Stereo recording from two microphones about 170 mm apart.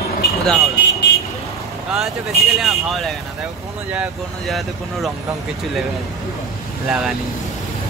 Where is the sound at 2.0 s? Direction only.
Centre (ahead or behind).